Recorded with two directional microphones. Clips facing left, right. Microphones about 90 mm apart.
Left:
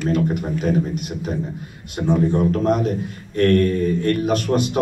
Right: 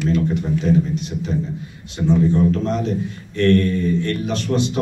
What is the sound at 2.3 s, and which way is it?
Speech, 50° left (ahead or behind).